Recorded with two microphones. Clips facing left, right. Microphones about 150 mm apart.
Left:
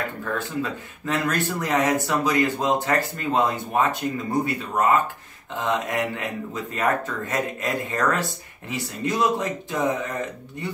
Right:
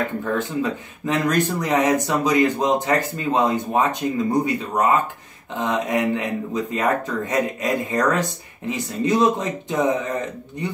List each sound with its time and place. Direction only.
0.2 s speech: 20° right (ahead or behind)